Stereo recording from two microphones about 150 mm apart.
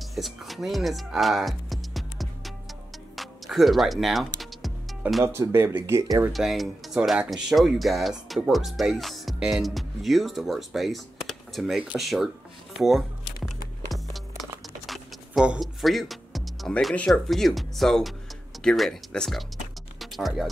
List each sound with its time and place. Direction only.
0.1 s music: centre (ahead or behind)
3.2 s speech: centre (ahead or behind)
4.4 s music: centre (ahead or behind)
5.2 s speech: 15° right (ahead or behind)
6.3 s speech: centre (ahead or behind)
14.4 s a sound: centre (ahead or behind)
18.6 s speech: 5° left (ahead or behind)
20.0 s music: centre (ahead or behind)